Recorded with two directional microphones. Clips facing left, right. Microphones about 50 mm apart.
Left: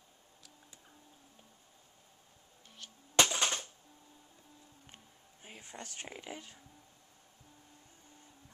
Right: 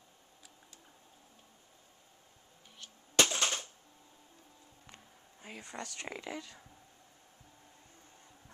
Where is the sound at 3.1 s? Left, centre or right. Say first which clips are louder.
Even; centre.